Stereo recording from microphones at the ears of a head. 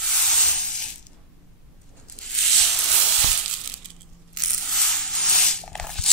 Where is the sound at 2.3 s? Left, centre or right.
Right.